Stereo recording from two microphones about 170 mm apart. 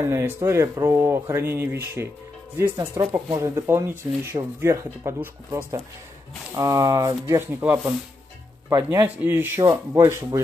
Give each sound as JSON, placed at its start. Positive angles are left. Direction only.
{"t": 0.0, "sound": "speech", "side_deg": -15}